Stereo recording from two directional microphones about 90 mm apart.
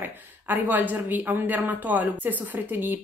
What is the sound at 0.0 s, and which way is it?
Speech, 20° right (ahead or behind).